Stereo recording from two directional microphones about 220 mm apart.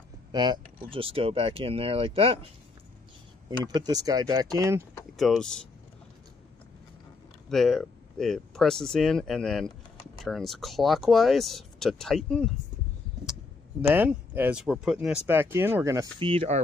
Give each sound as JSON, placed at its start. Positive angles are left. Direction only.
{"t": 0.3, "sound": "speech", "side_deg": -20}
{"t": 3.4, "sound": "speech", "side_deg": -20}
{"t": 5.1, "sound": "speech", "side_deg": 0}
{"t": 7.4, "sound": "speech", "side_deg": 0}